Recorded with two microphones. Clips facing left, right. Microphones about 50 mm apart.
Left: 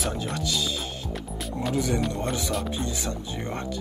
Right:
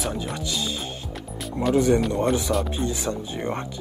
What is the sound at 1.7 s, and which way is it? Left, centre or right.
Speech, right.